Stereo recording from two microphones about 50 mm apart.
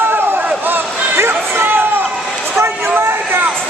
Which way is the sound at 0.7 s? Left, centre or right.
Right.